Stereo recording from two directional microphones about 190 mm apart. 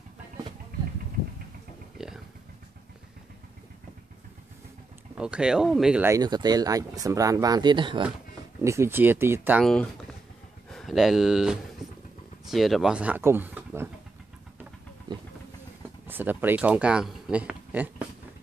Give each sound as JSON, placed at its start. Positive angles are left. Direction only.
{"t": 5.1, "sound": "speech", "side_deg": -5}
{"t": 6.1, "sound": "speech", "side_deg": -20}
{"t": 8.6, "sound": "speech", "side_deg": -15}
{"t": 10.7, "sound": "speech", "side_deg": 0}
{"t": 16.1, "sound": "speech", "side_deg": -10}